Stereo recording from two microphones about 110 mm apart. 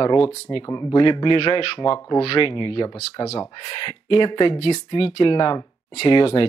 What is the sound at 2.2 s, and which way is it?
Speech, 45° left (ahead or behind).